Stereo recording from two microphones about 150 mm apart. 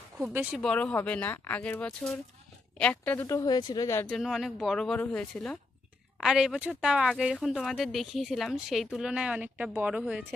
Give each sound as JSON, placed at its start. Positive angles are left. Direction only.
{"t": 0.3, "sound": "speech", "side_deg": -10}
{"t": 0.6, "sound": "speech", "side_deg": 10}
{"t": 3.3, "sound": "speech", "side_deg": 25}
{"t": 4.1, "sound": "a woman's voice", "side_deg": 0}